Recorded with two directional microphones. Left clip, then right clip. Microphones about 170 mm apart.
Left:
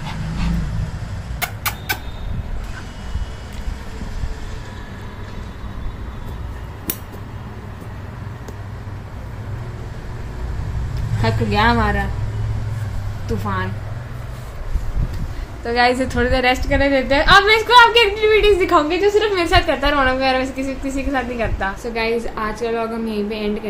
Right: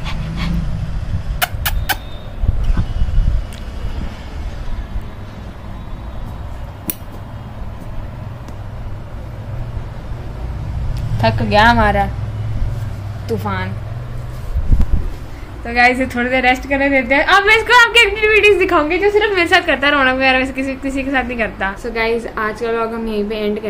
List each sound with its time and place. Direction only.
1.4 s a sound: 90° right
11.2 s a woman's voice: 60° right (ahead or behind)
13.3 s a woman's voice: 55° right (ahead or behind)
15.6 s a woman's voice: 10° left (ahead or behind)
18.8 s a woman's voice: 10° left (ahead or behind)
19.5 s a woman's voice: centre (ahead or behind)